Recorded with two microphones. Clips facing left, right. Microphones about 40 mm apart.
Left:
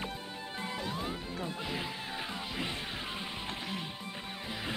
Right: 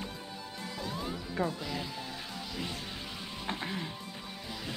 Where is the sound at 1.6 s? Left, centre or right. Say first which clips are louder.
Left 1 dB; left.